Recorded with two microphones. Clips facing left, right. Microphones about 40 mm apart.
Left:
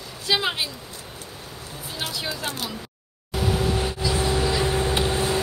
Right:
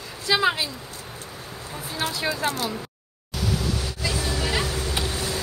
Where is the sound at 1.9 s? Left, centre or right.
Right.